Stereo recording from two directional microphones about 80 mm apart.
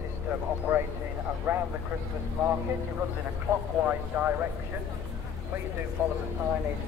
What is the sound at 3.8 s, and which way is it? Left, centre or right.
Speech, right.